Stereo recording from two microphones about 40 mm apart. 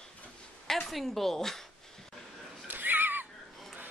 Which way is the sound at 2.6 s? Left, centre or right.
Right.